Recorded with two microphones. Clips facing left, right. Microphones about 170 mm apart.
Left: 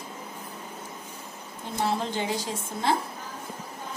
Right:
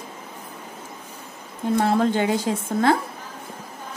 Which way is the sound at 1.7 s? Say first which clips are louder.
Right 8 dB; 55° right (ahead or behind).